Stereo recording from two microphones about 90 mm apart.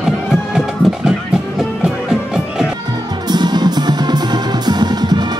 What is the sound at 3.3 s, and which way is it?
Music, 50° right (ahead or behind).